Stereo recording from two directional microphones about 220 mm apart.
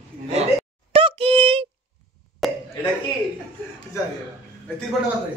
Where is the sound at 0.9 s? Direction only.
25° right (ahead or behind).